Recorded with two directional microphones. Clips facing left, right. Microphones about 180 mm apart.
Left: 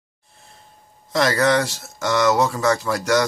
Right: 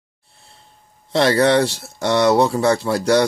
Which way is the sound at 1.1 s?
30° right (ahead or behind).